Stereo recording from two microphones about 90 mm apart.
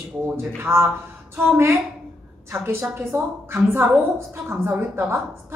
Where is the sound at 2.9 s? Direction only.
30° right (ahead or behind).